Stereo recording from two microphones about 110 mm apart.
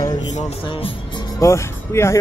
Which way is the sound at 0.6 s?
50° left (ahead or behind).